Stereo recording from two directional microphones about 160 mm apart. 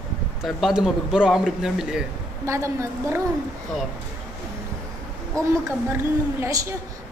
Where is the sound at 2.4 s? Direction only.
20° right (ahead or behind).